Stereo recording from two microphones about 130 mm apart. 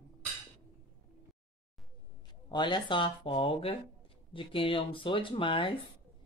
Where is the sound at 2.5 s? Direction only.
35° left (ahead or behind).